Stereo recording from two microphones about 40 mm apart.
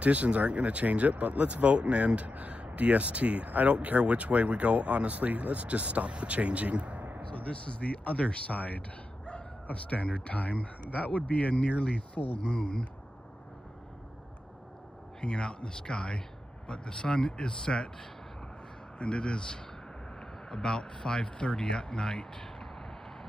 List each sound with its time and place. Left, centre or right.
0.0 s speech: right
7.2 s speech: left
15.1 s speech: left
18.9 s speech: left